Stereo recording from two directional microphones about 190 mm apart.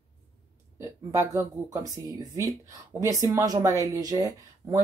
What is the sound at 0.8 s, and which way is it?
Speech, 15° right (ahead or behind).